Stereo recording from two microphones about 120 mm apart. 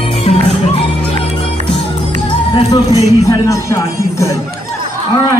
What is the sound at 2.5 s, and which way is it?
Music, 30° left (ahead or behind).